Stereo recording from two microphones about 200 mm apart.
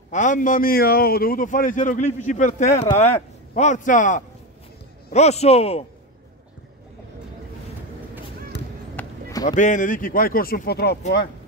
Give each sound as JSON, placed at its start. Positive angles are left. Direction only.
{"t": 0.1, "sound": "a man's voice", "side_deg": 40}
{"t": 8.5, "sound": "a sound", "side_deg": 60}
{"t": 8.9, "sound": "basketball bounce", "side_deg": 20}
{"t": 9.6, "sound": "speech", "side_deg": 40}